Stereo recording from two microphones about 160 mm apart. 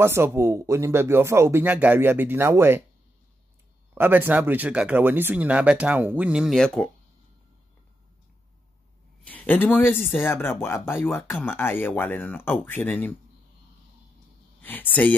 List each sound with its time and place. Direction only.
0.0 s speech: 15° right (ahead or behind)
3.9 s speech: 10° right (ahead or behind); by 6.9 s 5° left (ahead or behind)
9.2 s speech: 10° left (ahead or behind)
14.6 s speech: 10° left (ahead or behind)